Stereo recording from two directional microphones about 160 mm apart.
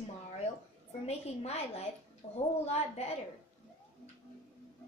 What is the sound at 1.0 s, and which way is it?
A woman's voice, 40° left (ahead or behind).